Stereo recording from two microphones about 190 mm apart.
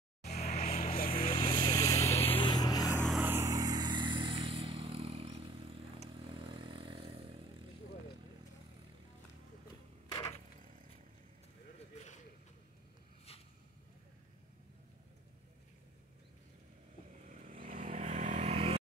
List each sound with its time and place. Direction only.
0.4 s vehicle: 35° left (ahead or behind); by 2.3 s 15° left (ahead or behind)
2.3 s a sound: 20° left (ahead or behind)
3.0 s vehicle: centre (ahead or behind)
3.3 s vehicle: 15° right (ahead or behind)
17.4 s vehicle: 45° right (ahead or behind)